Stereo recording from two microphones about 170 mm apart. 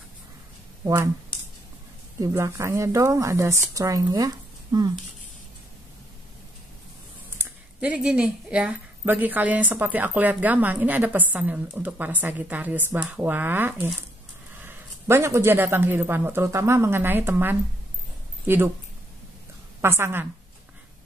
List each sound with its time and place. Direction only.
0.8 s speech: 20° right (ahead or behind)
2.1 s speech: 20° right (ahead or behind)
7.2 s speech: 10° right (ahead or behind)
19.8 s speech: 15° right (ahead or behind)